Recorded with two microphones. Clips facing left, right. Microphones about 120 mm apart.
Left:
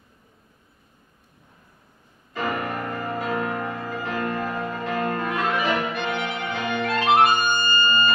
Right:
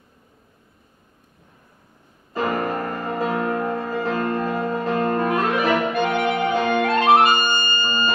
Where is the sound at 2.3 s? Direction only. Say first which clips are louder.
Right 4 dB; 35° right (ahead or behind).